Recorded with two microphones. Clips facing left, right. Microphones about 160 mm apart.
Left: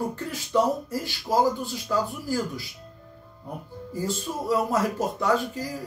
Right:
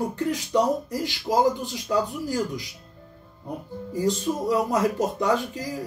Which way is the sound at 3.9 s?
15° right (ahead or behind).